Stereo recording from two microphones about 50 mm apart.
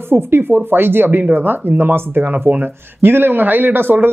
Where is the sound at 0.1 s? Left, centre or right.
Right.